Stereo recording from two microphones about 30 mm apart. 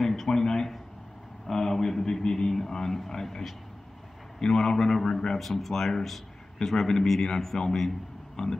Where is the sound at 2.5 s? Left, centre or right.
Centre.